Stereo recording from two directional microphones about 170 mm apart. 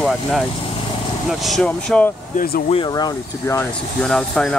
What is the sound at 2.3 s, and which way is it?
Speech, 65° left (ahead or behind).